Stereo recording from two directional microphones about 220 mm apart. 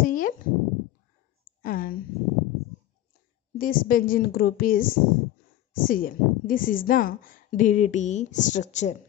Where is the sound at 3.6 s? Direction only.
40° left (ahead or behind).